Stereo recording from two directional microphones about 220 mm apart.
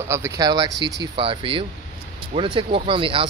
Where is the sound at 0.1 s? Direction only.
15° right (ahead or behind).